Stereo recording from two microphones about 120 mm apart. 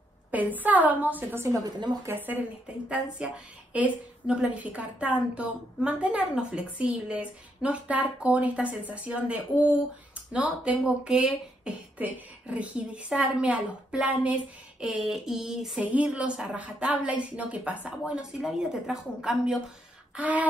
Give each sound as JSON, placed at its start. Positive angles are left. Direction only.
{"t": 0.3, "sound": "speech", "side_deg": -15}
{"t": 1.5, "sound": "a woman's voice", "side_deg": -30}
{"t": 2.1, "sound": "speech", "side_deg": -15}